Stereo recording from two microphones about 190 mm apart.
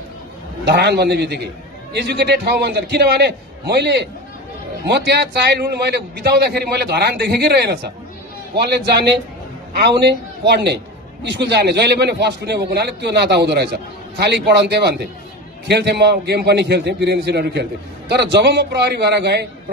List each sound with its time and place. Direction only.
0.7 s a man's voice: 60° right (ahead or behind)